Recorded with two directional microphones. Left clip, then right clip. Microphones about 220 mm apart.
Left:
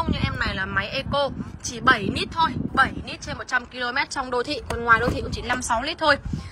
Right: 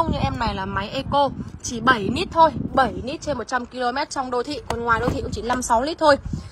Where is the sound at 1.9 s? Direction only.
30° right (ahead or behind).